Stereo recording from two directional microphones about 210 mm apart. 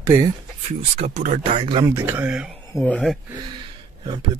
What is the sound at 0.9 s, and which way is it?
Speech, 35° right (ahead or behind).